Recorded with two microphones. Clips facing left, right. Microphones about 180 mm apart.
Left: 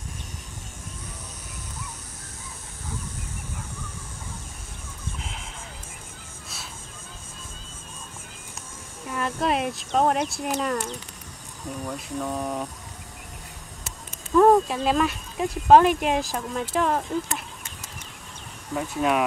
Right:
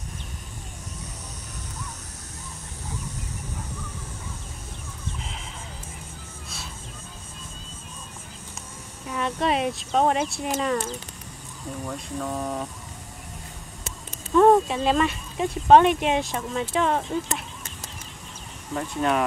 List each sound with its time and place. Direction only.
9.1 s speech: centre (ahead or behind)
14.3 s speech: centre (ahead or behind)
18.8 s speech: 5° left (ahead or behind)